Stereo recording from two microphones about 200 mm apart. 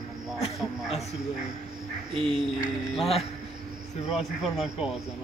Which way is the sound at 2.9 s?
30° left (ahead or behind).